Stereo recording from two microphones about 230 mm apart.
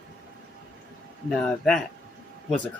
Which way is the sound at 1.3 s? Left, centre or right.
Centre.